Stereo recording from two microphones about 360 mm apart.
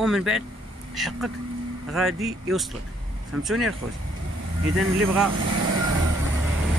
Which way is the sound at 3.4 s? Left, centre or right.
Centre.